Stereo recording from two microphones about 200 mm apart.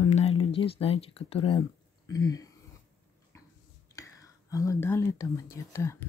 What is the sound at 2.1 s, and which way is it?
Speech, 15° left (ahead or behind).